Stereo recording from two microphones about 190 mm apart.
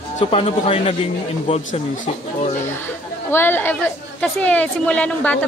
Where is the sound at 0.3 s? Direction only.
30° left (ahead or behind).